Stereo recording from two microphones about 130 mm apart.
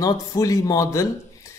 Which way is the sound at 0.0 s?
25° left (ahead or behind).